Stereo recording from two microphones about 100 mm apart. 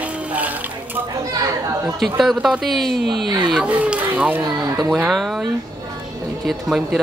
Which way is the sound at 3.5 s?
15° right (ahead or behind).